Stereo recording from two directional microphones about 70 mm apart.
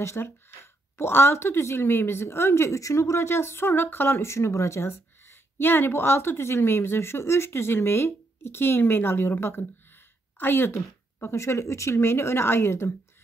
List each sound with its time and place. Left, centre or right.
0.0 s a woman's voice: left